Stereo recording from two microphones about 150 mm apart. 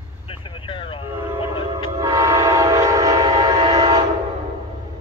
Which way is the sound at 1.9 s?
20° right (ahead or behind).